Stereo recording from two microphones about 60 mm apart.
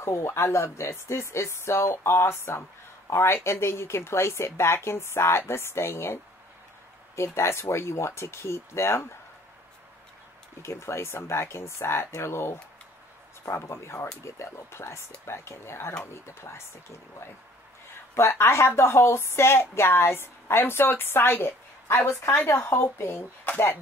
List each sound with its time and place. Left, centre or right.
0.0 s a woman's voice: left
7.2 s a woman's voice: left
10.6 s a woman's voice: left
18.1 s a woman's voice: left